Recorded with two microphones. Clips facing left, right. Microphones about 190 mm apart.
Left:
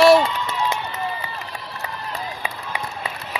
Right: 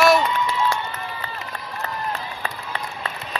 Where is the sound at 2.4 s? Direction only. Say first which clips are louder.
Left 1 dB; 10° left (ahead or behind).